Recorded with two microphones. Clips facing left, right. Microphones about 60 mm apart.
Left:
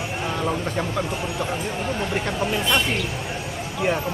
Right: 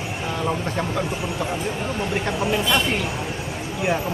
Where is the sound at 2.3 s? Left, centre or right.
Centre.